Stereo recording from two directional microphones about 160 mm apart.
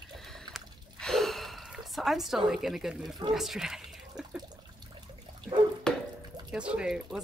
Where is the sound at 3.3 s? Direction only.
5° right (ahead or behind).